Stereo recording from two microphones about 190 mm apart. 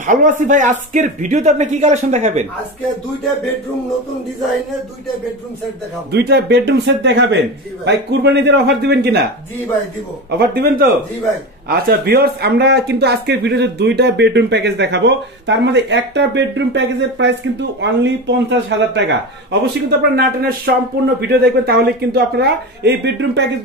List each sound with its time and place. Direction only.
0.0 s speech: 45° right (ahead or behind)
6.1 s speech: 60° right (ahead or behind)
10.3 s a man's voice: 55° right (ahead or behind)
19.6 s speech: 60° right (ahead or behind)